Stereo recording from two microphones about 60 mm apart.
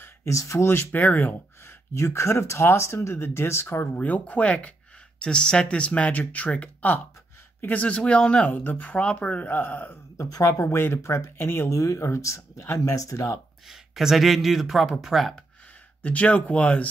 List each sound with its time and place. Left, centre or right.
0.0 s speech: left
0.9 s speech: left
1.6 s speech: left; by 8.5 s centre
8.6 s speech: left
10.1 s speech: left
11.4 s speech: left
11.7 s speech: left
13.7 s speech: centre
16.0 s speech: left